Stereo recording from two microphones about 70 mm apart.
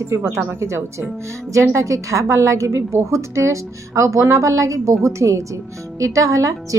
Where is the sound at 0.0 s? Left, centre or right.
Right.